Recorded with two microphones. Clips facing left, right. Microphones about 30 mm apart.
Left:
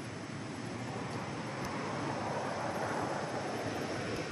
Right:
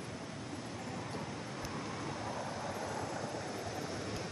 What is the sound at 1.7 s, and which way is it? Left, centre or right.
Vehicle, centre.